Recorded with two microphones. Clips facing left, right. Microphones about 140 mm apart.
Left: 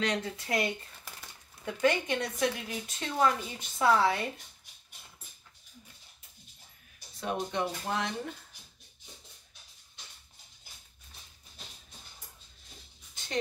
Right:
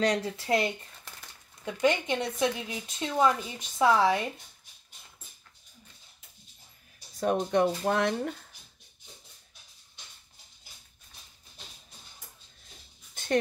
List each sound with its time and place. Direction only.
0.0 s speech: 35° right (ahead or behind)
1.8 s speech: 20° right (ahead or behind)
7.2 s speech: 50° right (ahead or behind)